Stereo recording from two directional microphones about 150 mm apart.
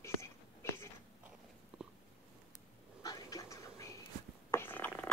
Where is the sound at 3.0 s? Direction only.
25° left (ahead or behind).